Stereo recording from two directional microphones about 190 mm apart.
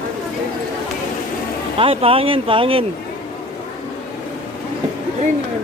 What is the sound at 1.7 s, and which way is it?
A woman's voice, 30° right (ahead or behind).